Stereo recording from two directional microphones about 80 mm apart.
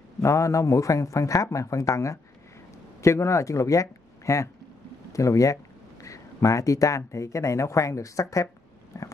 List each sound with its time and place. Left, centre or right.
0.2 s speech: left
8.9 s biting: left